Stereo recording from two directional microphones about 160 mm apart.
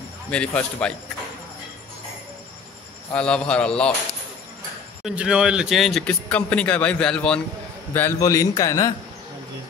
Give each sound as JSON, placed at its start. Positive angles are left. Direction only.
{"t": 0.3, "sound": "a man's voice", "side_deg": 5}
{"t": 3.1, "sound": "speech", "side_deg": 5}
{"t": 5.0, "sound": "speech", "side_deg": -5}
{"t": 7.9, "sound": "a man's voice", "side_deg": 15}